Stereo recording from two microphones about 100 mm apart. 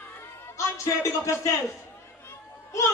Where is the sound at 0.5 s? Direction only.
30° left (ahead or behind).